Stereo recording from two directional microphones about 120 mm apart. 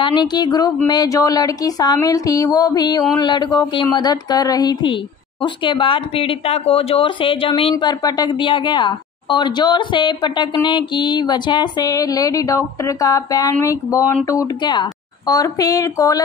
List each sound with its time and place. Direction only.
0.0 s a woman's voice: 40° left (ahead or behind)
7.7 s a woman's voice: 35° left (ahead or behind)
14.6 s speech: 40° left (ahead or behind)